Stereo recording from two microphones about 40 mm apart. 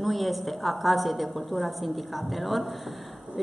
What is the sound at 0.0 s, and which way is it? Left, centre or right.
A woman's voice, centre.